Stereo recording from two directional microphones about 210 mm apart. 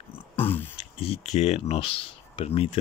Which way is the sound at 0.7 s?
30° left (ahead or behind).